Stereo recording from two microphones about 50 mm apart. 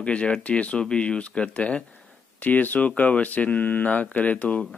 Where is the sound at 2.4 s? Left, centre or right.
Left.